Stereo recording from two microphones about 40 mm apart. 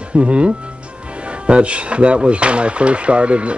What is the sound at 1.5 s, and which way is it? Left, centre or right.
Speech, right.